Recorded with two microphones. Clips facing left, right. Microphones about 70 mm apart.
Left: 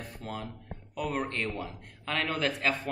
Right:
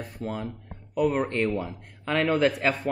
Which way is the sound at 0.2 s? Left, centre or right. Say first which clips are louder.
Right 7 dB; centre.